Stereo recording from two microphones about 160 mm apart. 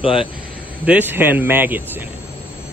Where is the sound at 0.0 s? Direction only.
35° left (ahead or behind).